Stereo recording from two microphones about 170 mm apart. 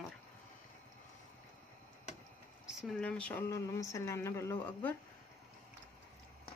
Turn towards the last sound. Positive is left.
turn(degrees=15)  # may be behind; listen again after turning